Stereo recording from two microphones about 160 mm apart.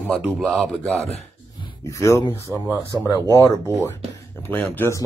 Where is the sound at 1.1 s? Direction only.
30° left (ahead or behind).